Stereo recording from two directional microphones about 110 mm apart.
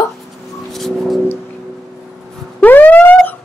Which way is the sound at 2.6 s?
15° left (ahead or behind).